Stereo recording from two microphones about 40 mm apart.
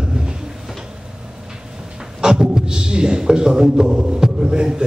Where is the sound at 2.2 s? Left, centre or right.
Right.